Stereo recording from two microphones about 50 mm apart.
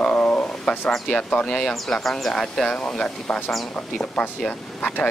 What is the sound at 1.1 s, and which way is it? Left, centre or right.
Wild animals, left.